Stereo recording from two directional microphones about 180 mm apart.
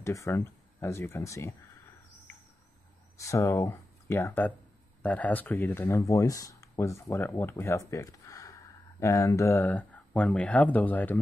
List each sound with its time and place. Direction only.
0.0 s speech: 15° left (ahead or behind)
3.2 s speech: 15° left (ahead or behind)